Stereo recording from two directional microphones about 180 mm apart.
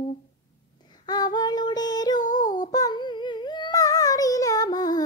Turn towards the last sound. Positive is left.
turn(degrees=20)  # may be behind; listen again after turning